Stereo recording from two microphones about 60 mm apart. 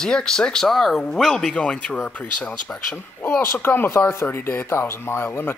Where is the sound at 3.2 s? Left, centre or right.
Left.